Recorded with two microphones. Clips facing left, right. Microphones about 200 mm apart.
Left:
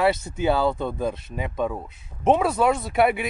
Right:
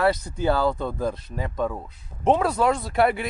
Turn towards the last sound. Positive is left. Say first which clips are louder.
# left 1 dB
turn(degrees=20)  # may be behind; listen again after turning